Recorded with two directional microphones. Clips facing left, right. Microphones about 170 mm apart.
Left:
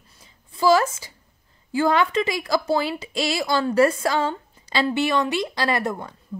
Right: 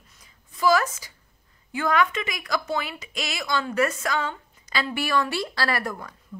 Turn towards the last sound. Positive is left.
turn(degrees=25)  # may be behind; listen again after turning